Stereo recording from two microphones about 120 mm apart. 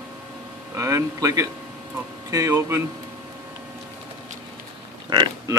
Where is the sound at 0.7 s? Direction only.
25° right (ahead or behind).